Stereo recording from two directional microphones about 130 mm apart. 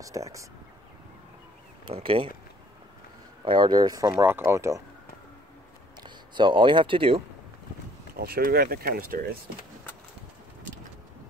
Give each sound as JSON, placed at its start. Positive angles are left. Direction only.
{"t": 0.0, "sound": "speech", "side_deg": -25}
{"t": 1.9, "sound": "speech", "side_deg": -45}
{"t": 3.4, "sound": "speech", "side_deg": -35}
{"t": 6.0, "sound": "speech", "side_deg": -35}
{"t": 8.4, "sound": "speech", "side_deg": -90}